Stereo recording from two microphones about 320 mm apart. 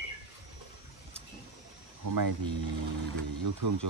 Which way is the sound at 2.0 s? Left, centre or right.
Right.